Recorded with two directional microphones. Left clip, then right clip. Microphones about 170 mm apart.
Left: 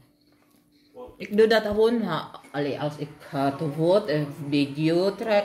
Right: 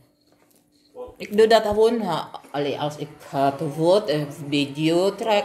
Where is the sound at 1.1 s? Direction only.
10° left (ahead or behind).